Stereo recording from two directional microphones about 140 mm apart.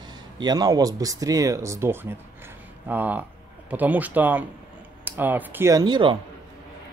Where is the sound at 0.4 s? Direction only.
30° right (ahead or behind).